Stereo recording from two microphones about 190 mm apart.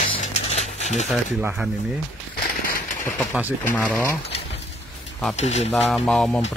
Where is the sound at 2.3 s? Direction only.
45° left (ahead or behind).